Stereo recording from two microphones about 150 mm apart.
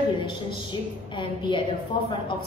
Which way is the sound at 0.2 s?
30° left (ahead or behind).